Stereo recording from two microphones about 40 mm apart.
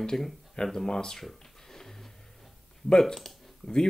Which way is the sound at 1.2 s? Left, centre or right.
Centre.